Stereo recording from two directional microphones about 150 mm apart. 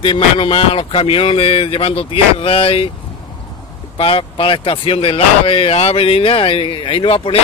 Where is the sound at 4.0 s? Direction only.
35° left (ahead or behind).